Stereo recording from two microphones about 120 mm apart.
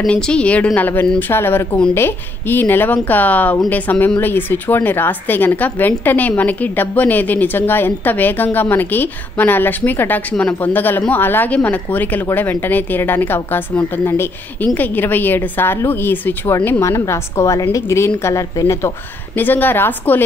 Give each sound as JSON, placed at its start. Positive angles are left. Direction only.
{"t": 0.0, "sound": "a woman's voice", "side_deg": 10}